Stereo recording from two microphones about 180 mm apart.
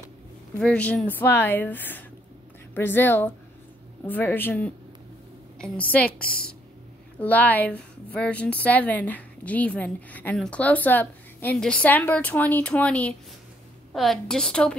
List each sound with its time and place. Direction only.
0.6 s a woman's voice: 5° left (ahead or behind)
6.2 s a woman's voice: 55° left (ahead or behind)
7.2 s a woman's voice: 10° left (ahead or behind)